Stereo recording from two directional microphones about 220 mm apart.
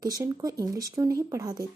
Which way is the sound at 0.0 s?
15° right (ahead or behind).